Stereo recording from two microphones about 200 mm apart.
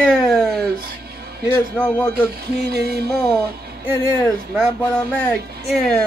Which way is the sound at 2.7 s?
50° right (ahead or behind).